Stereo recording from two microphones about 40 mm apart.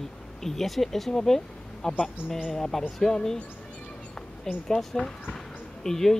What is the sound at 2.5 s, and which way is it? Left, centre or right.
Speech, centre.